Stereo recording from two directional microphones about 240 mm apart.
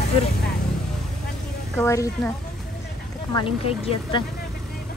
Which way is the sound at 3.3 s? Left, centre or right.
Left.